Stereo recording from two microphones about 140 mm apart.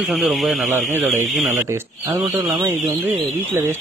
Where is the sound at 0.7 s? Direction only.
15° right (ahead or behind).